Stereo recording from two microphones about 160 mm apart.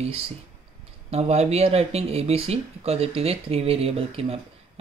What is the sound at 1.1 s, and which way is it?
Speech, 40° right (ahead or behind).